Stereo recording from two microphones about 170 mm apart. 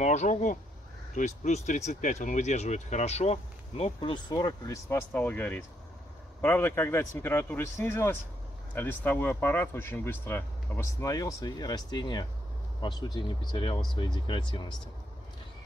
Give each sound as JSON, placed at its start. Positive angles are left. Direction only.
{"t": 0.0, "sound": "speech", "side_deg": 45}
{"t": 4.8, "sound": "speech", "side_deg": 10}